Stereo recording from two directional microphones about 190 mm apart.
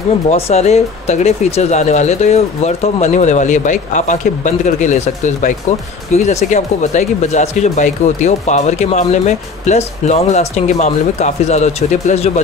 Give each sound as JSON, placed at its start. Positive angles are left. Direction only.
{"t": 0.3, "sound": "speech", "side_deg": 35}